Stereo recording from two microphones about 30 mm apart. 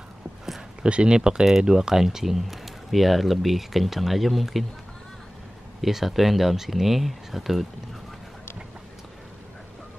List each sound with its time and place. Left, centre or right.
0.8 s speech: right; by 4.6 s centre
5.8 s speech: centre